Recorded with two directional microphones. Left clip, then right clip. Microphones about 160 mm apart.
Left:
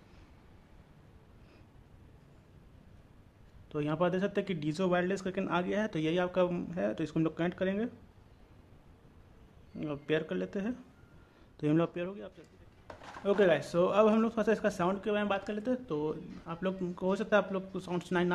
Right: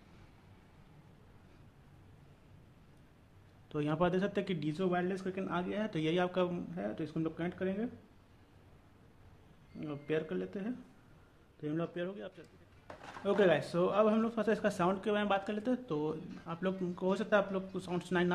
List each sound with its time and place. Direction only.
3.6 s speech: 10° left (ahead or behind)
4.7 s a man's voice: 25° left (ahead or behind)
6.5 s speech: 30° left (ahead or behind)
9.8 s a man's voice: 25° left (ahead or behind)
11.6 s speech: 40° left (ahead or behind)
11.9 s speech: 15° left (ahead or behind)
13.2 s speech: 10° left (ahead or behind)